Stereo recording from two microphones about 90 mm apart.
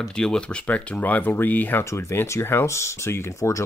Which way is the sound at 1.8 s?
30° left (ahead or behind).